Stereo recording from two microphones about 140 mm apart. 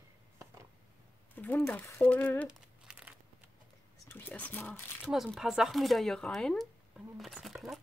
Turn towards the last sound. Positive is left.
turn(degrees=0)  # may be behind; listen again after turning